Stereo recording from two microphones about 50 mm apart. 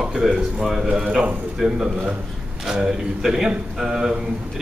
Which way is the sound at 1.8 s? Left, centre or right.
Right.